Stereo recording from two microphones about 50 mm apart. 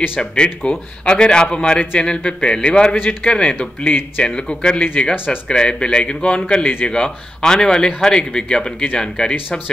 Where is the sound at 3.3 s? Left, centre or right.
Left.